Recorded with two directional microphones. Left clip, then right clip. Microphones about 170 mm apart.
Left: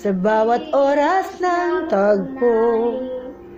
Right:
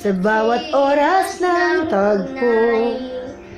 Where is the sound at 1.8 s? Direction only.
15° left (ahead or behind).